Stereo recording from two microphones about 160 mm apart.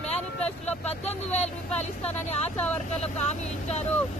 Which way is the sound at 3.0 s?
45° left (ahead or behind).